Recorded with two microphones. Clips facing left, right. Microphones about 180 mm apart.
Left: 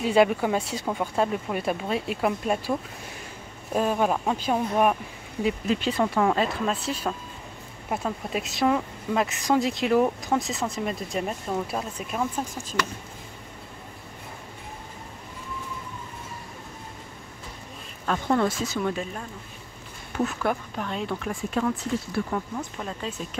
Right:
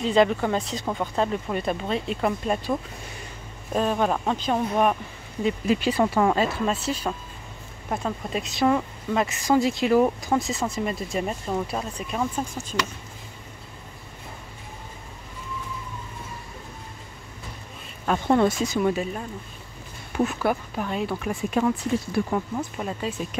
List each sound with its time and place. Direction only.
0.0 s speech: 10° left (ahead or behind)
5.7 s speech: 5° right (ahead or behind)
18.0 s speech: 20° right (ahead or behind)
20.2 s speech: 10° right (ahead or behind)